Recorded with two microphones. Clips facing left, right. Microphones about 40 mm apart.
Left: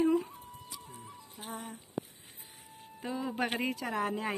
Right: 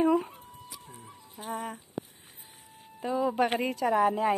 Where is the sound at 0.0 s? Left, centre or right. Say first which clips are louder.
Right 3 dB; right.